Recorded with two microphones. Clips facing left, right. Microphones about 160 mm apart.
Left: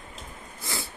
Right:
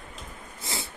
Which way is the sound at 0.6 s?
25° right (ahead or behind).